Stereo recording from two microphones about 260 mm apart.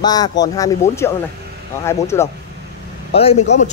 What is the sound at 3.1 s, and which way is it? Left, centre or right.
Speech, left.